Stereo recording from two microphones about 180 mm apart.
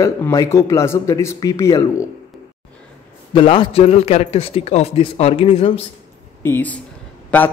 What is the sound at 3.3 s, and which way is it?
A man's voice, 30° left (ahead or behind).